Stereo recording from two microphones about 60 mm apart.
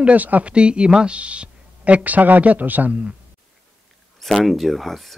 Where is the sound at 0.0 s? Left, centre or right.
Right.